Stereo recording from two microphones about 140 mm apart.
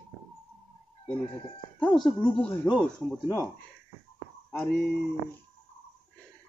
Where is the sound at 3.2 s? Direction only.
20° left (ahead or behind).